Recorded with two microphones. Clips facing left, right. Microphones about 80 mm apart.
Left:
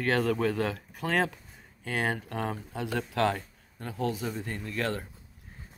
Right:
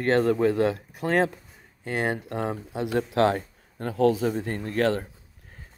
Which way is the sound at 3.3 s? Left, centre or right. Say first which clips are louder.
Right 5 dB; right.